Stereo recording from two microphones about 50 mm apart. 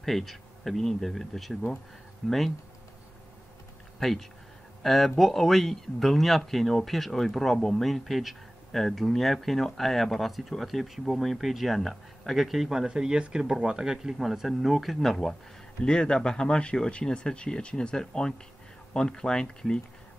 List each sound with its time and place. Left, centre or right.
0.0 s speech: centre
4.0 s speech: centre
15.8 s speech: centre